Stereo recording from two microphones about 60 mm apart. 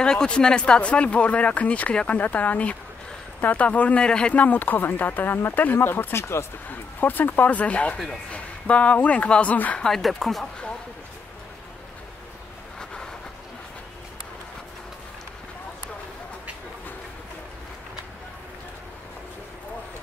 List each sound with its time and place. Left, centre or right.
0.0 s speech: centre; by 6.1 s left
6.1 s speech: left
6.7 s speech: left
9.8 s speech: centre